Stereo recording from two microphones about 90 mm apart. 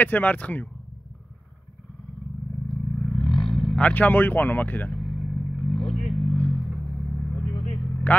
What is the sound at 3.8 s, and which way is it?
Speech, 20° left (ahead or behind).